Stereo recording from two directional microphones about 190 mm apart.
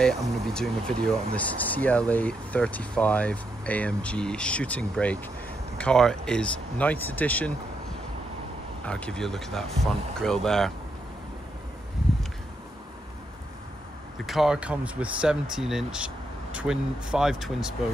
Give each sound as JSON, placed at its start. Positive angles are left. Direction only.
{"t": 0.0, "sound": "speech", "side_deg": 0}
{"t": 8.8, "sound": "speech", "side_deg": 5}
{"t": 14.2, "sound": "speech", "side_deg": 0}